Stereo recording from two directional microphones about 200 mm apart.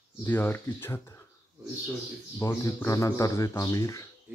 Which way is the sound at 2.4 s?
15° left (ahead or behind).